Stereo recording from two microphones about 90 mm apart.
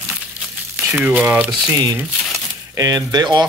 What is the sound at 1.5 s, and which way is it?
Speech, 45° right (ahead or behind).